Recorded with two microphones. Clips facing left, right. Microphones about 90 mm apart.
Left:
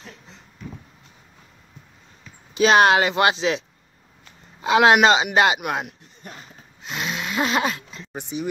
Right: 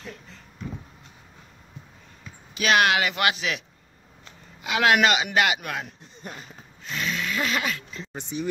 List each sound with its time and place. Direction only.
2.5 s speech: 30° left (ahead or behind)
6.9 s snoring: 20° left (ahead or behind)
8.1 s speech: 15° left (ahead or behind)